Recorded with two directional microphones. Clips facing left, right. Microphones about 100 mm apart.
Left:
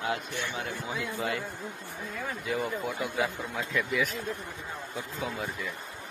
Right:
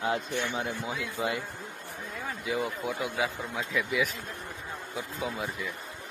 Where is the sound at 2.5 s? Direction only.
5° right (ahead or behind).